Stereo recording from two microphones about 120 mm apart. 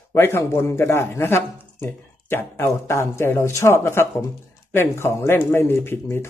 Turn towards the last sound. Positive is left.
turn(degrees=20)  # may be behind; listen again after turning